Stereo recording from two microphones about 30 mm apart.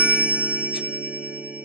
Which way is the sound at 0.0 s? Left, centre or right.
Right.